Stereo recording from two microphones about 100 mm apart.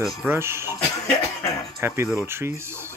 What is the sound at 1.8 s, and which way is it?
Speech, 25° right (ahead or behind).